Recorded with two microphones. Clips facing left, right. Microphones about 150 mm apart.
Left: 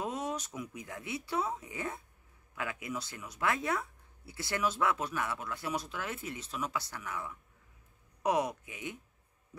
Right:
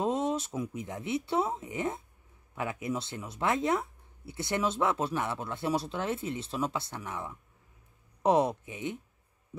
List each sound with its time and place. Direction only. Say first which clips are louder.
0.0 s speech: right 7 dB; 25° right (ahead or behind)